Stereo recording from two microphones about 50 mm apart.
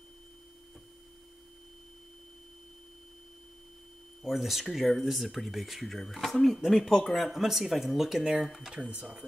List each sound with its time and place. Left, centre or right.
4.2 s speech: centre